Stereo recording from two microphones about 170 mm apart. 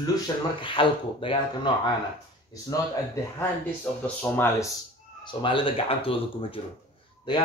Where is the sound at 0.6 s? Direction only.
30° left (ahead or behind).